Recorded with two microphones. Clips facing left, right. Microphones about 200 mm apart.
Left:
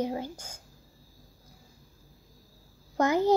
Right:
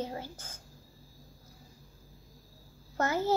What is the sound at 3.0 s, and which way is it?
Speech, 15° left (ahead or behind).